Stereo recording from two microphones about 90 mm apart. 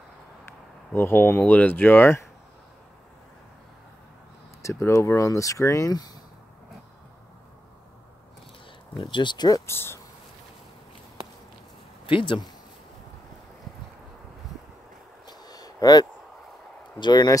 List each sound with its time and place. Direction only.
0.9 s speech: 25° left (ahead or behind)
4.6 s speech: 30° left (ahead or behind)
8.9 s speech: 60° left (ahead or behind)
9.7 s speech: 30° left (ahead or behind)
12.1 s speech: 70° left (ahead or behind)
15.2 s a sound: 45° left (ahead or behind)
17.0 s speech: 50° left (ahead or behind)